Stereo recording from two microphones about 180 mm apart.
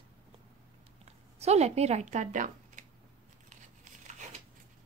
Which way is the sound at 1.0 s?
35° right (ahead or behind).